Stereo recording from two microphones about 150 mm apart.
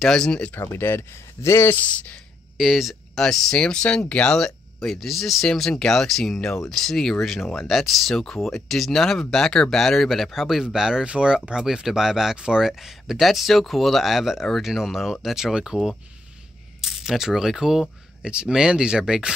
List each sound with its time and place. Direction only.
0.0 s speech: 5° left (ahead or behind)
0.6 s speech: 15° left (ahead or behind)
2.5 s speech: centre (ahead or behind)